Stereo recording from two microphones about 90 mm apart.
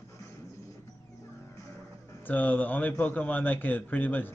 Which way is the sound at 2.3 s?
20° left (ahead or behind).